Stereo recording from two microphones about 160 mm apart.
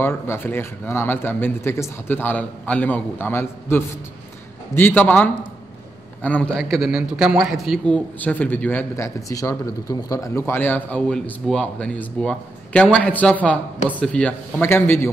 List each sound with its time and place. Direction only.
0.0 s a man's voice: 15° left (ahead or behind)
6.7 s a man's voice: centre (ahead or behind); by 15.0 s 15° left (ahead or behind)